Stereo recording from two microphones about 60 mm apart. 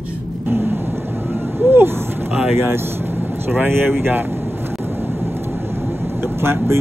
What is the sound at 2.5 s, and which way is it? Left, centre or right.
Speech, right.